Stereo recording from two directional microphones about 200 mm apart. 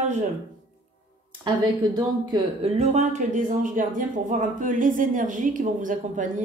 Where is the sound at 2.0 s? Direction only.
25° right (ahead or behind).